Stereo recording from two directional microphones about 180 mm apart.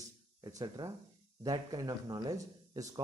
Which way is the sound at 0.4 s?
20° right (ahead or behind).